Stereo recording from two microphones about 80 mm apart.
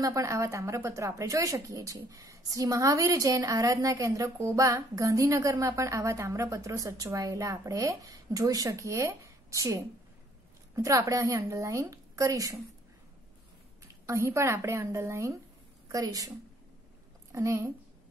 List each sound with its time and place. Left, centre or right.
0.0 s speech: right
14.0 s a woman's voice: right
15.9 s speech: right
17.3 s a woman's voice: right